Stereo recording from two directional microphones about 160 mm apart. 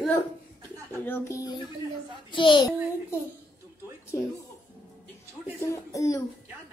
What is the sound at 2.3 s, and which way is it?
Speech, 30° left (ahead or behind).